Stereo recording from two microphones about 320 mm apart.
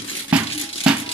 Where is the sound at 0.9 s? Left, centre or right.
Centre.